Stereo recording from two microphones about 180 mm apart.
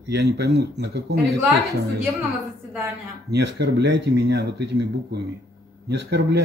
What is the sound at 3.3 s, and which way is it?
Speech, 65° right (ahead or behind).